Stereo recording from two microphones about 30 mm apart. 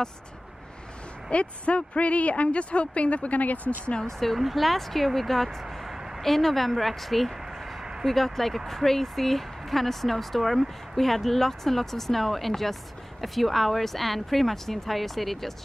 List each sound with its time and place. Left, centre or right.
1.3 s speech: left
4.0 s speech: centre
4.4 s speech: centre
5.9 s a sound: centre
6.2 s speech: centre